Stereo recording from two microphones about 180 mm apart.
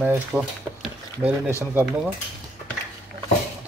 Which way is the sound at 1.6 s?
10° right (ahead or behind).